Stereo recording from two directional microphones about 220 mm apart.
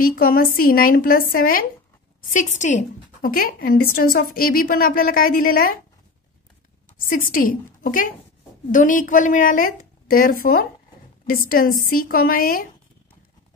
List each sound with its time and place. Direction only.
0.0 s a woman's voice: 40° left (ahead or behind)
7.1 s a woman's voice: 40° left (ahead or behind)